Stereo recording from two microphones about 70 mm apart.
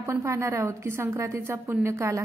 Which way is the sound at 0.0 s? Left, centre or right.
Right.